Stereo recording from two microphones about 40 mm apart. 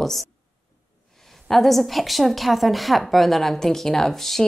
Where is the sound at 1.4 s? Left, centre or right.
Centre.